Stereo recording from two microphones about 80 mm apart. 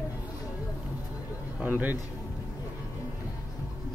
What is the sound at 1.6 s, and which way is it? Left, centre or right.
Speech, right.